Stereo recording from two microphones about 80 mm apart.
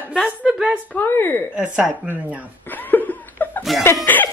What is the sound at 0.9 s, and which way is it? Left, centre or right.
Speech, left.